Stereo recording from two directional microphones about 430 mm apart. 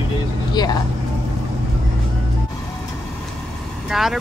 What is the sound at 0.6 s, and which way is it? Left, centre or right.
Speech, centre.